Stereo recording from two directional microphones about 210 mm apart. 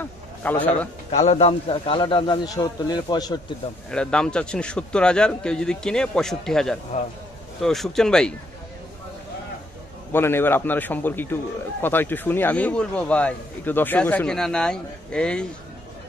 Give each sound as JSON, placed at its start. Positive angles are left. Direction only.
{"t": 0.0, "sound": "a sound", "side_deg": 10}
{"t": 1.1, "sound": "a man's voice", "side_deg": 30}
{"t": 3.9, "sound": "speech", "side_deg": 5}
{"t": 10.1, "sound": "a man's voice", "side_deg": 10}